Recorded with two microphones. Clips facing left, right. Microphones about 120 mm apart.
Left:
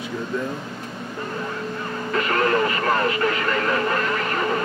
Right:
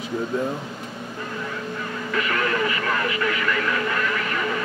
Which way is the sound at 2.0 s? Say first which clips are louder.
Left 4 dB; 35° left (ahead or behind).